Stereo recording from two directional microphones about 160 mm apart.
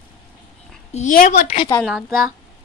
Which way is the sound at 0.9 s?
55° left (ahead or behind).